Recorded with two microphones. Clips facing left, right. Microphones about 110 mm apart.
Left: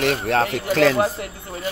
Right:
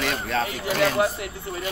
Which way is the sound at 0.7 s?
90° left.